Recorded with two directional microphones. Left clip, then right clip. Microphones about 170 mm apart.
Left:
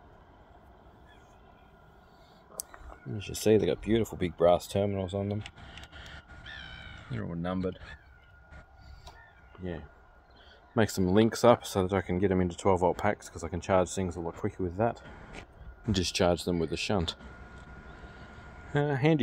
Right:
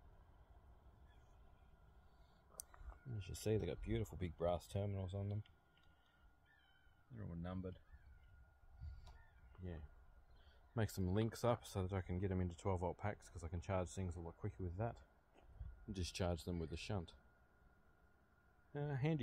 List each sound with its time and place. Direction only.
2.5 s speech: 5° right (ahead or behind)
7.2 s speech: 10° right (ahead or behind)
9.6 s speech: 25° right (ahead or behind)
10.7 s speech: 15° right (ahead or behind)
18.7 s speech: 10° right (ahead or behind)